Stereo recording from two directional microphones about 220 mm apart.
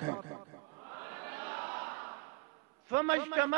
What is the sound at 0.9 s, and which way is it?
Crowd, 15° right (ahead or behind).